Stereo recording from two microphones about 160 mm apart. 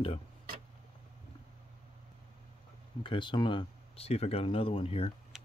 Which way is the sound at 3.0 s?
30° left (ahead or behind).